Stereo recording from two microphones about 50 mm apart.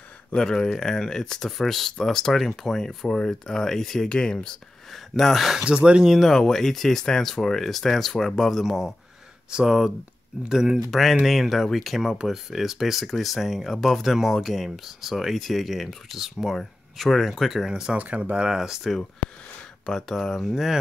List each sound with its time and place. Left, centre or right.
0.3 s speech: centre
4.1 s speech: centre
4.9 s speech: centre
5.6 s speech: centre
6.2 s speech: centre
9.5 s speech: centre
10.9 s speech: centre
17.9 s speech: right
18.6 s speech: centre
19.9 s speech: centre